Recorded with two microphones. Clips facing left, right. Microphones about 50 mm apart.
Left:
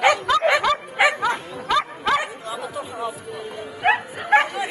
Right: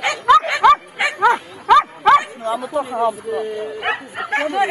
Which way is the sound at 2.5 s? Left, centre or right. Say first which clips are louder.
Right 8 dB; right.